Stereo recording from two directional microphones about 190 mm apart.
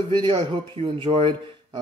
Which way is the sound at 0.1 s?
25° right (ahead or behind).